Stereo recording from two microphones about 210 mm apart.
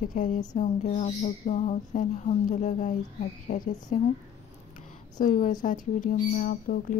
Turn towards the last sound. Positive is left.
turn(degrees=40)  # may be behind; listen again after turning